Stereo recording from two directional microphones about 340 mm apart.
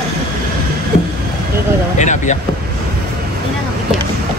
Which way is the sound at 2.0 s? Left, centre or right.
Left.